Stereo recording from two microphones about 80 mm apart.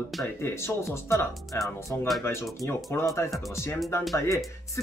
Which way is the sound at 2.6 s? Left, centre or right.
Left.